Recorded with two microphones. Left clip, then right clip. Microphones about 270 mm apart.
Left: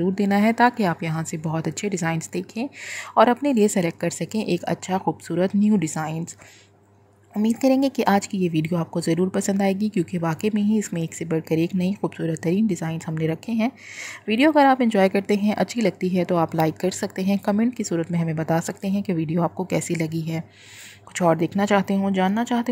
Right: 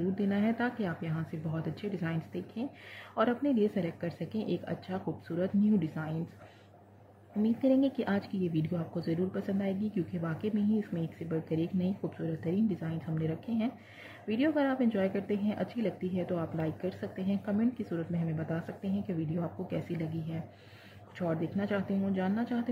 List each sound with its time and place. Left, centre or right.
0.1 s speech: left
7.4 s speech: left